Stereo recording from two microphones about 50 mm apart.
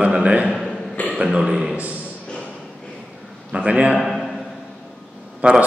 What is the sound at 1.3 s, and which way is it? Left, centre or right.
Speech, centre.